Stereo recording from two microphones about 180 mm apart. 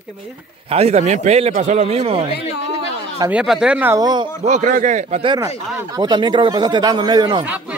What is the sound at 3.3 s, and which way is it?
Speech, 5° right (ahead or behind).